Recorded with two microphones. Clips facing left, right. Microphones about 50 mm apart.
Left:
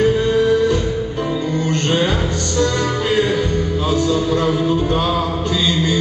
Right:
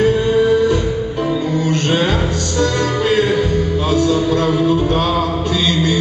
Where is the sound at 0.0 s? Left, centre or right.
Centre.